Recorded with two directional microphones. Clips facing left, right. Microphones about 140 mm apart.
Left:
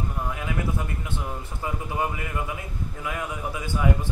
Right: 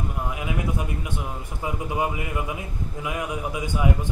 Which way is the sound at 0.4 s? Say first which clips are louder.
Right 2 dB; 15° right (ahead or behind).